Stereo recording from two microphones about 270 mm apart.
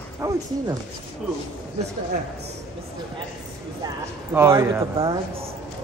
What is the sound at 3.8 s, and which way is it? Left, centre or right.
Speech, centre.